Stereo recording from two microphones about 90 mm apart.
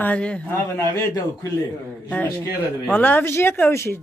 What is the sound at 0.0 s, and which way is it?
Speech, 15° left (ahead or behind).